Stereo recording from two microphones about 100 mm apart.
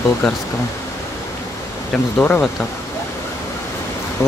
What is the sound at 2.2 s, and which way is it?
Speech, 15° left (ahead or behind).